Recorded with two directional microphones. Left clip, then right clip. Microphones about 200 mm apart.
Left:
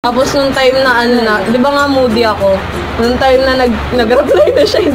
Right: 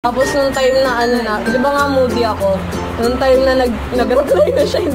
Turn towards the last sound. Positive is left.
turn(degrees=-20)  # may be behind; listen again after turning